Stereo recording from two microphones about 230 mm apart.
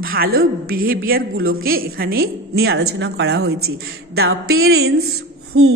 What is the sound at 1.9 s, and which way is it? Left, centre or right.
A woman's voice, right.